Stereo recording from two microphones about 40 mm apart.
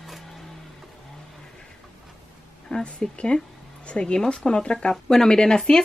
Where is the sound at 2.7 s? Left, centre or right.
Left.